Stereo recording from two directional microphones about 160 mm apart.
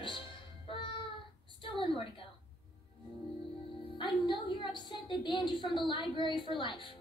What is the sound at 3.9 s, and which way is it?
A woman's voice, 30° left (ahead or behind).